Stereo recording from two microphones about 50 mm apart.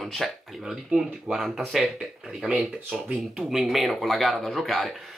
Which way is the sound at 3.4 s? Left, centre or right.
Centre.